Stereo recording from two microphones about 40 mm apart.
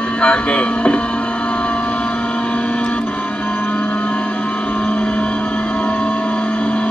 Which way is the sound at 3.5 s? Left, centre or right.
Left.